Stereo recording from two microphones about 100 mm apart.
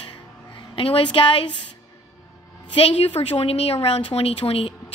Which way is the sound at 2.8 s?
80° left.